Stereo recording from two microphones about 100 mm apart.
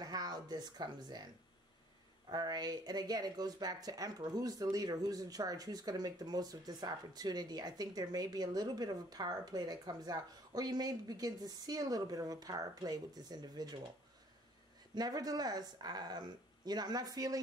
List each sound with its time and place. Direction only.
0.0 s speech: 40° right (ahead or behind)
2.2 s speech: 40° right (ahead or behind)
15.0 s speech: 40° right (ahead or behind)